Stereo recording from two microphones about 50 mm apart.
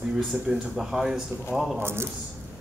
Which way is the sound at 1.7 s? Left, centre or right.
Right.